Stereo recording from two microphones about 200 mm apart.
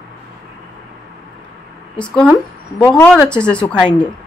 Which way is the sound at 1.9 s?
5° left (ahead or behind).